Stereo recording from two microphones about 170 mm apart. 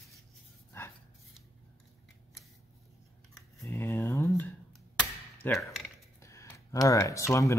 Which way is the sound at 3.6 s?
15° left (ahead or behind).